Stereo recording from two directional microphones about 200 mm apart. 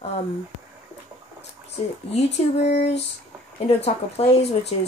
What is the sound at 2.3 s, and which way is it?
Speech, 60° left (ahead or behind).